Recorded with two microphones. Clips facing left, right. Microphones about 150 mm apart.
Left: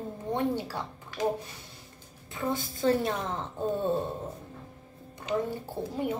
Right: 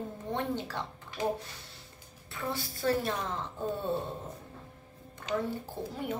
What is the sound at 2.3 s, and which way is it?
A woman's voice, 20° left (ahead or behind).